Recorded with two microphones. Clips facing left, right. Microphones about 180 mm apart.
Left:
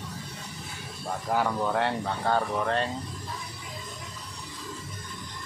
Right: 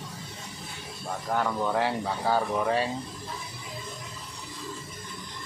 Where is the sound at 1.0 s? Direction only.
5° left (ahead or behind).